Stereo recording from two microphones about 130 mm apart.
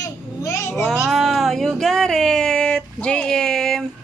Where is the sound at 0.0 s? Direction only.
25° left (ahead or behind).